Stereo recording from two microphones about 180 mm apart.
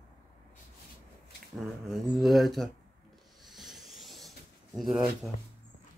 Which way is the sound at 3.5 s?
Centre (ahead or behind).